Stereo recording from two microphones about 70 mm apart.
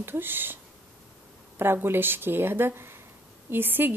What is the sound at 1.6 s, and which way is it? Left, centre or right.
Speech, right.